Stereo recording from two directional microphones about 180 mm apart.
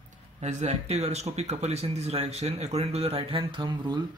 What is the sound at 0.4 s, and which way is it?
Speech, 40° right (ahead or behind).